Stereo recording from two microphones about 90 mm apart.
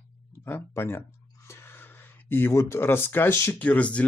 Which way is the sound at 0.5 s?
25° left (ahead or behind).